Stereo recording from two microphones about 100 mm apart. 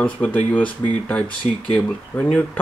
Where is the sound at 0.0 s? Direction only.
15° left (ahead or behind).